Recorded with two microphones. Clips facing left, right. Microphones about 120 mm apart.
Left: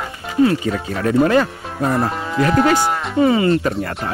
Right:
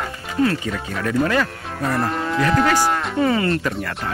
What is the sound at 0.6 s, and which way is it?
Speech, 35° left (ahead or behind).